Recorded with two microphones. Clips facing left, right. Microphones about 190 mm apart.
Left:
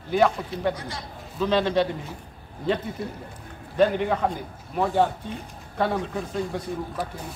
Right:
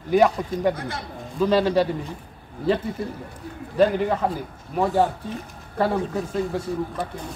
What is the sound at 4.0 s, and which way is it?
Speech, 5° right (ahead or behind).